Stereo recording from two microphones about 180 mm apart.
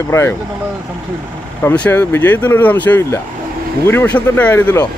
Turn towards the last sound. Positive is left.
turn(degrees=10)  # may be behind; listen again after turning